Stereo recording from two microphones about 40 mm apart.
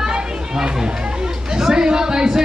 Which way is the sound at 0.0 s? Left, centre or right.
Centre.